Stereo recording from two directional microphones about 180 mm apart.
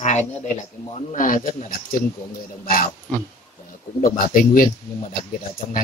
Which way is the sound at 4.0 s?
50° left (ahead or behind).